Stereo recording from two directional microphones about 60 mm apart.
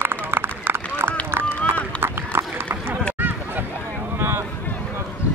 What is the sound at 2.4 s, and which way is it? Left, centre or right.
Run, right.